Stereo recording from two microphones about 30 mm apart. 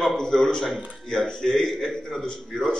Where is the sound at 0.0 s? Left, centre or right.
Centre.